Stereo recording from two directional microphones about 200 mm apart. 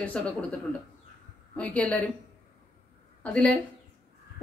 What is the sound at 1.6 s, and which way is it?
Speech, 5° left (ahead or behind).